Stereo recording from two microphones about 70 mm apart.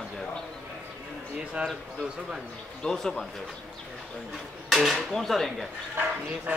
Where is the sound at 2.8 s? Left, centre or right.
Centre.